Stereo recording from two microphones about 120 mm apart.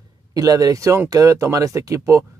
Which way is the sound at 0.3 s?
30° right (ahead or behind).